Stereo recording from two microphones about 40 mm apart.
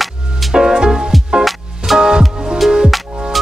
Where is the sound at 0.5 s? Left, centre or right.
Centre.